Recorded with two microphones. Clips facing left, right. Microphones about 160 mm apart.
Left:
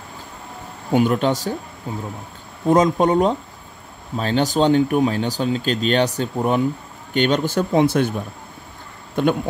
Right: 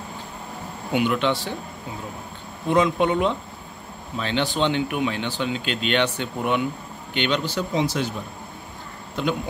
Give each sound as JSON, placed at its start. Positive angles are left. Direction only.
{"t": 0.9, "sound": "speech", "side_deg": 40}
{"t": 2.7, "sound": "speech", "side_deg": 40}
{"t": 9.2, "sound": "speech", "side_deg": 55}